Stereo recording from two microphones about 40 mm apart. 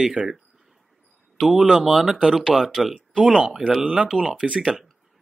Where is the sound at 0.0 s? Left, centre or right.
Right.